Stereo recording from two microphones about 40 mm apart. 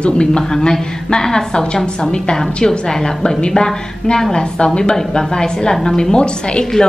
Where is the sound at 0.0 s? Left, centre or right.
Left.